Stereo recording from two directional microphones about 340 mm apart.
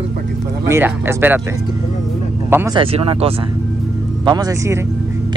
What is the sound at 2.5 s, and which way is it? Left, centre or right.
Speech, centre.